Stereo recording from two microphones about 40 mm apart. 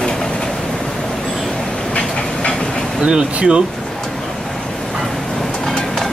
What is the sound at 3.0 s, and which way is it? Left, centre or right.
Speech, right.